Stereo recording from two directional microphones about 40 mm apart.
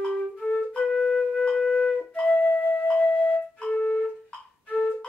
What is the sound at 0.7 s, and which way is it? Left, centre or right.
Flute, left.